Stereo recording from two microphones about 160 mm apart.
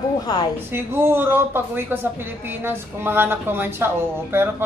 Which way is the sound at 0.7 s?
15° right (ahead or behind).